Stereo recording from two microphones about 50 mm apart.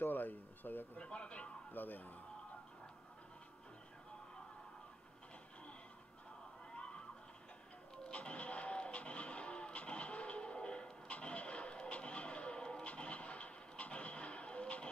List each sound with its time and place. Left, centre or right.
0.0 s a sound: left
0.9 s speech: left
1.7 s speech: left
6.7 s fowl: left
7.9 s music: centre